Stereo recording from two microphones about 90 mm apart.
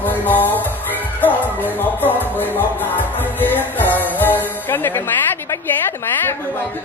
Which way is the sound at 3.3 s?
20° left (ahead or behind).